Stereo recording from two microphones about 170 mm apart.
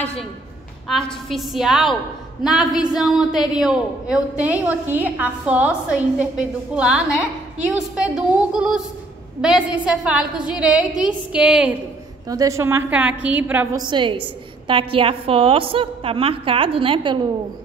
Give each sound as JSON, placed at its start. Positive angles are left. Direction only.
{"t": 0.0, "sound": "a woman's voice", "side_deg": 5}
{"t": 12.3, "sound": "a woman's voice", "side_deg": -20}
{"t": 13.7, "sound": "a woman's voice", "side_deg": -25}